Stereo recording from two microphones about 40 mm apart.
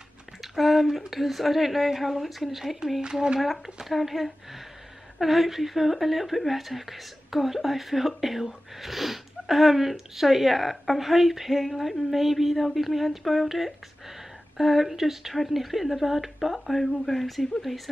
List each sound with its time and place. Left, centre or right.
0.4 s speech: centre
3.0 s speech: centre
3.3 s speech: centre